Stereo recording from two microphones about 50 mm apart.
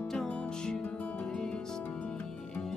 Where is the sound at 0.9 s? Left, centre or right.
Left.